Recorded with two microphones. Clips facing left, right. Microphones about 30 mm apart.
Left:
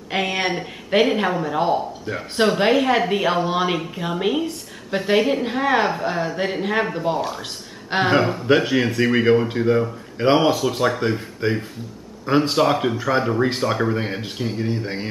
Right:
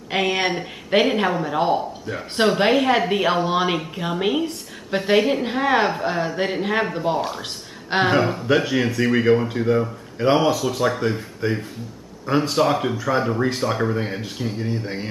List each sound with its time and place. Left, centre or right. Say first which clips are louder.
0.1 s a woman's voice: right 1 dB; centre
8.1 s speech: left 4 dB; centre
10.1 s speech: left 1 dB; centre
13.9 s a man's voice: left 1 dB; centre